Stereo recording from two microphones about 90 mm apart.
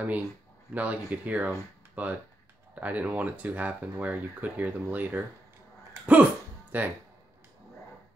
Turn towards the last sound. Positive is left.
turn(degrees=-20)  # may be behind; listen again after turning